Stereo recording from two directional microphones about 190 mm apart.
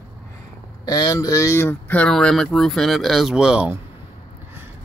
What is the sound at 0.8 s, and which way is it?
Speech, 20° left (ahead or behind).